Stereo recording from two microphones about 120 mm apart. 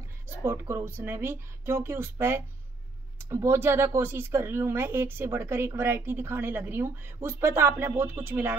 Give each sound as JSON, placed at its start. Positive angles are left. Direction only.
{"t": 0.4, "sound": "a woman's voice", "side_deg": -20}